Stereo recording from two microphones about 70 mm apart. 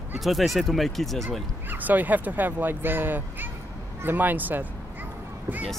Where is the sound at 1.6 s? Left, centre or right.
Right.